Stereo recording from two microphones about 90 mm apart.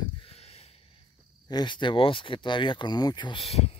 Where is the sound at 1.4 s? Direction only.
55° left (ahead or behind).